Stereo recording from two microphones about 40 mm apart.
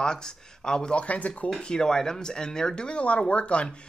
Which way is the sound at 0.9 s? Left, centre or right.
Left.